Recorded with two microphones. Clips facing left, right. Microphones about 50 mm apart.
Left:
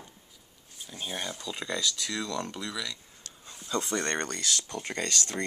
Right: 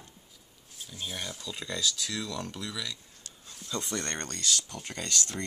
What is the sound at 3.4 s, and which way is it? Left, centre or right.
Speech, centre.